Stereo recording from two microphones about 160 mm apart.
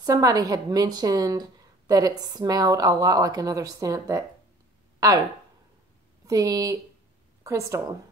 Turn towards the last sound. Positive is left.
turn(degrees=-20)  # may be behind; listen again after turning